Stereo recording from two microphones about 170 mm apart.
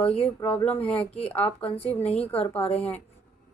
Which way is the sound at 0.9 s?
35° left (ahead or behind).